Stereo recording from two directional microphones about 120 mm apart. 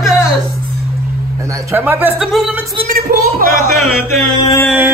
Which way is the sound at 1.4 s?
25° right (ahead or behind).